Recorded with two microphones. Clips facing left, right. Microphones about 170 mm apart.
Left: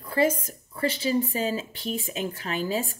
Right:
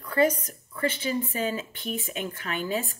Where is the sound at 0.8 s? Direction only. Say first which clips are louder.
Left 3 dB; 35° left (ahead or behind).